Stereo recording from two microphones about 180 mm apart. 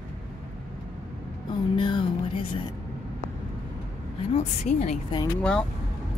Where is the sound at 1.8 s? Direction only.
25° left (ahead or behind).